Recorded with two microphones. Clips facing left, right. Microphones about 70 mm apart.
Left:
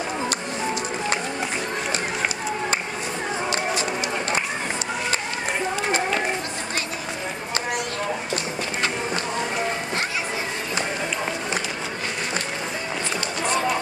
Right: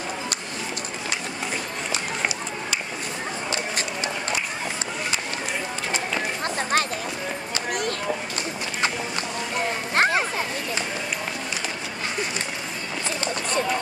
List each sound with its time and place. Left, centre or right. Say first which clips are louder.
9.9 s children playing: right 6 dB; right